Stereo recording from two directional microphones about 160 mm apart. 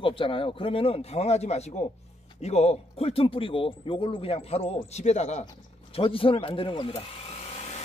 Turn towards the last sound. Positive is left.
turn(degrees=45)  # may be behind; listen again after turning